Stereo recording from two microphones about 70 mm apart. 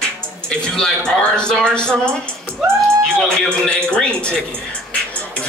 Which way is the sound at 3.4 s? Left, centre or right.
Centre.